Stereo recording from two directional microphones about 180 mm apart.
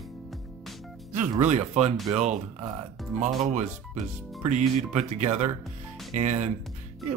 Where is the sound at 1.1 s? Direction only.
40° right (ahead or behind).